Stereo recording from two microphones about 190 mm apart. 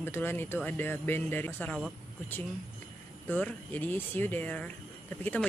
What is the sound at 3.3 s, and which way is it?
Speech, 10° left (ahead or behind).